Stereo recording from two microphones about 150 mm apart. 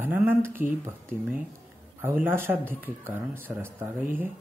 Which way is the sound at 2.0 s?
15° right (ahead or behind).